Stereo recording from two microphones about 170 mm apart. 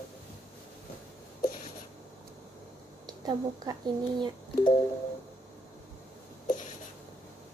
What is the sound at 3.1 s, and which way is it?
Speech, 20° right (ahead or behind).